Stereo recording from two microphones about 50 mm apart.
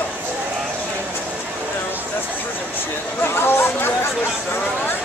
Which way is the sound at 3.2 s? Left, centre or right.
Left.